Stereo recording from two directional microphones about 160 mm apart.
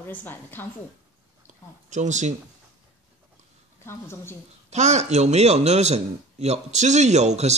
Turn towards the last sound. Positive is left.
turn(degrees=-45)  # may be behind; listen again after turning